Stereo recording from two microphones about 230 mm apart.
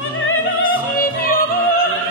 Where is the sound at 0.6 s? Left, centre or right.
Left.